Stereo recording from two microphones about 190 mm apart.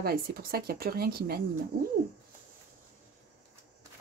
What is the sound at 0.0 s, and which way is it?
A woman's voice, 50° right (ahead or behind).